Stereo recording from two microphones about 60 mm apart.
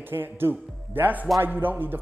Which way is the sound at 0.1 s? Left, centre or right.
Right.